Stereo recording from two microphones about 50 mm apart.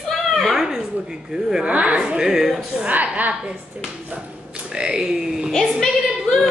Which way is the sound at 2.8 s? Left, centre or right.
Right.